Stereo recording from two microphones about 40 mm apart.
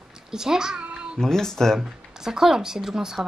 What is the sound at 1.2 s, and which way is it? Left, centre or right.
Speech, centre.